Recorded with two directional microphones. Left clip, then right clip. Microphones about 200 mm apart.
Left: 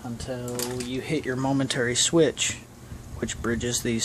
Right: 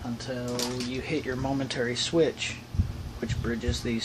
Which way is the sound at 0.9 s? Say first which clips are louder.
Left 2 dB; 50° left (ahead or behind).